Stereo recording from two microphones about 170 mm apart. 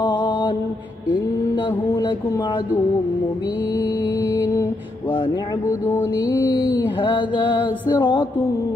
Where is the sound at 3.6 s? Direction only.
20° left (ahead or behind).